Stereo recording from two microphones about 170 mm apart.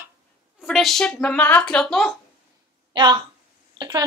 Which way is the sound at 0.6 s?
Centre (ahead or behind).